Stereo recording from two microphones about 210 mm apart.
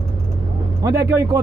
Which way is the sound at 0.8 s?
15° right (ahead or behind).